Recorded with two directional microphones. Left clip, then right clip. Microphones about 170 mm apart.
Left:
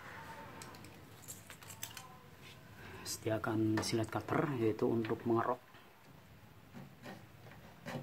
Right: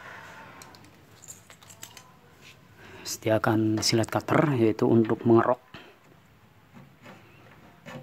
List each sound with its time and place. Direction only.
2.8 s speech: 45° right (ahead or behind)